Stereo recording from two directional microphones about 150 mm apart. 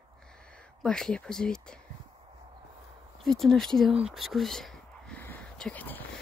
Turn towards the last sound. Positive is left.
turn(degrees=10)  # may be behind; listen again after turning